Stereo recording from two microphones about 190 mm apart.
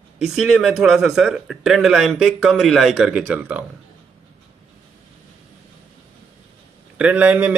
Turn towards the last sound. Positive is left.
turn(degrees=-10)  # may be behind; listen again after turning